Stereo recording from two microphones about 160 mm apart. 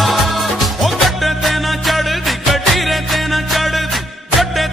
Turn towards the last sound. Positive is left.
turn(degrees=0)  # may be behind; listen again after turning